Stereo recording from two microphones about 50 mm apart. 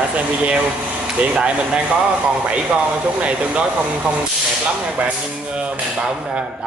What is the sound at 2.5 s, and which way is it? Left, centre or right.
Speech, right.